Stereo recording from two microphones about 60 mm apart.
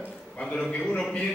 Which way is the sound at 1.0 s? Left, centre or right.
Centre.